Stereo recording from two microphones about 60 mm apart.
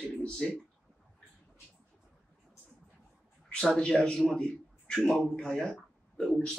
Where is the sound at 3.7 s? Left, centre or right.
Centre.